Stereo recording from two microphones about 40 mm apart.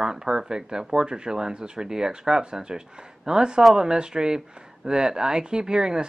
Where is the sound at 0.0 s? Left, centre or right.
Centre.